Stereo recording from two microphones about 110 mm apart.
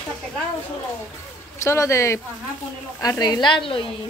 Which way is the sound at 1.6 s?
25° left (ahead or behind).